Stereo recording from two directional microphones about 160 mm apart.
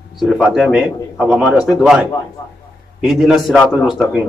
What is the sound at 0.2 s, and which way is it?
A man's voice, centre (ahead or behind).